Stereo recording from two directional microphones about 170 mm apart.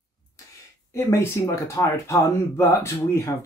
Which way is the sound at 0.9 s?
15° left (ahead or behind).